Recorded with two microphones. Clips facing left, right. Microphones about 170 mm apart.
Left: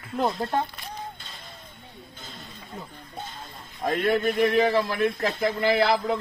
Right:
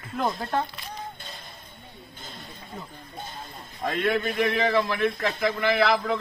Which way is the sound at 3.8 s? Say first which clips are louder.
Left 2 dB; 40° left (ahead or behind).